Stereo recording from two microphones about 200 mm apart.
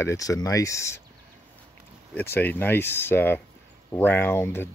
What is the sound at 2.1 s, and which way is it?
Speech, 10° left (ahead or behind).